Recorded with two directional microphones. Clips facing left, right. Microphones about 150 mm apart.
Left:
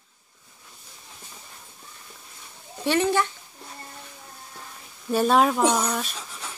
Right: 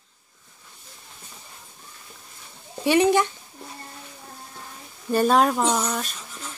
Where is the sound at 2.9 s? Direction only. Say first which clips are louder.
Right 4 dB; 15° right (ahead or behind).